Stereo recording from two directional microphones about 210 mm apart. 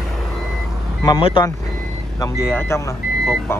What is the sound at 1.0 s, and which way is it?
Speech, 20° left (ahead or behind).